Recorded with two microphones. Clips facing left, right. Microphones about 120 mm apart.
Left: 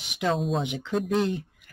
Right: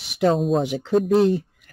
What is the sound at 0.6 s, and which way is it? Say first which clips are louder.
Speech: right 8 dB; 40° right (ahead or behind).